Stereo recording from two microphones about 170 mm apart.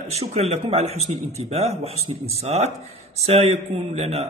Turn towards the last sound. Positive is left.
turn(degrees=-40)  # may be behind; listen again after turning